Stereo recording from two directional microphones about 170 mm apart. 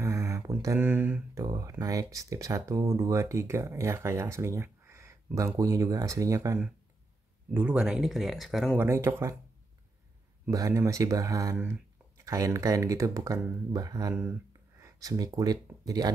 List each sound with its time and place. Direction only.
0.0 s a sound: 20° right (ahead or behind)
0.8 s speech: 10° right (ahead or behind)
7.5 s speech: 5° right (ahead or behind)
8.7 s speech: 15° right (ahead or behind)
10.5 s speech: 20° right (ahead or behind)
11.5 s speech: 10° right (ahead or behind)
12.3 s speech: 20° right (ahead or behind)